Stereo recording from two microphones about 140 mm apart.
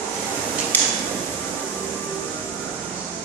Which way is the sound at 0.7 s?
15° left (ahead or behind).